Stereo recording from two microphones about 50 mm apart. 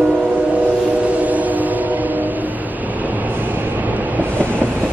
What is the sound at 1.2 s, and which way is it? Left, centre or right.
Train, right.